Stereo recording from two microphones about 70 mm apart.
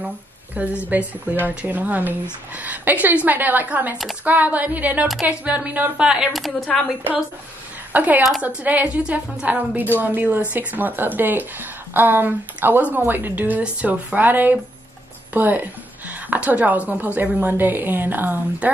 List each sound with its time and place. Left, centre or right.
0.8 s a woman's voice: right
6.3 s speech: centre
7.9 s a woman's voice: right